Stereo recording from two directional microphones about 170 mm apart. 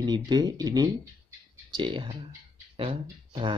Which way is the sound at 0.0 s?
25° right (ahead or behind).